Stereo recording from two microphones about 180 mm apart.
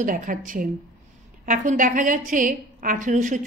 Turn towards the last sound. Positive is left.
turn(degrees=-45)  # may be behind; listen again after turning